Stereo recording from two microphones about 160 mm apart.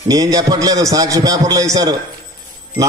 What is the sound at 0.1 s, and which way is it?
A man's voice, 25° right (ahead or behind).